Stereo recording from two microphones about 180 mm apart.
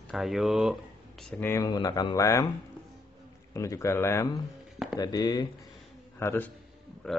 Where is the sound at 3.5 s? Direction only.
15° left (ahead or behind).